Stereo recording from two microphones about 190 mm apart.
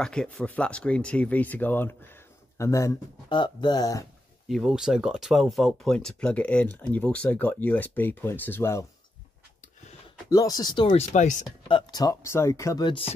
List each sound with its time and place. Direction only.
0.0 s speech: 5° left (ahead or behind); by 4.0 s 20° left (ahead or behind)
4.5 s speech: centre (ahead or behind)
10.3 s speech: 20° left (ahead or behind)
11.1 s speech: 40° left (ahead or behind)
11.6 s speech: 25° left (ahead or behind)